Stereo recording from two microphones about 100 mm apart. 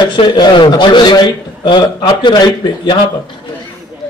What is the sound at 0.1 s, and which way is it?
Speech, 50° left (ahead or behind).